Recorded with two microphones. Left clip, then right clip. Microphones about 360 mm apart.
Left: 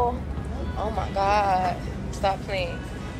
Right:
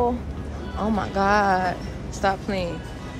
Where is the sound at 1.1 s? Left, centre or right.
Right.